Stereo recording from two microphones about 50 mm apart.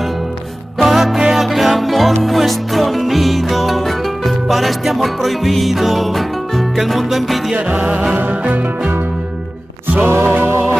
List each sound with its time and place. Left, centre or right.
0.7 s music: centre
7.5 s music: right
10.0 s music: right